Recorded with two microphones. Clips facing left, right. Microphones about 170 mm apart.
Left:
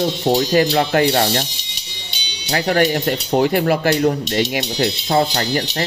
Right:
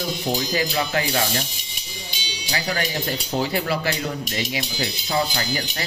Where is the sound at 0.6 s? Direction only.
50° left (ahead or behind).